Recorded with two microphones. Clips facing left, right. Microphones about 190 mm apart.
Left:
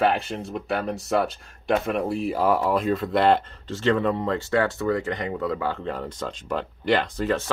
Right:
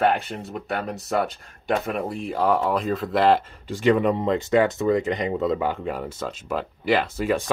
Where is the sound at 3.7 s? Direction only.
15° right (ahead or behind).